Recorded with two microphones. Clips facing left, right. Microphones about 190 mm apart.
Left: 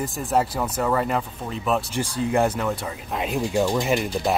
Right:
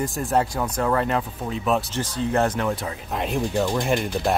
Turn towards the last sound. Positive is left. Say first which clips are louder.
# even
turn(degrees=0)  # may be behind; listen again after turning